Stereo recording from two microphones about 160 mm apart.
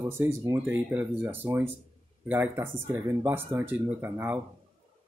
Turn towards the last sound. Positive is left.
turn(degrees=-10)  # may be behind; listen again after turning